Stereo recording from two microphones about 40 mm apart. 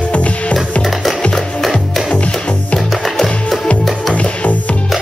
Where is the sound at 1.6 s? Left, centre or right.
Centre.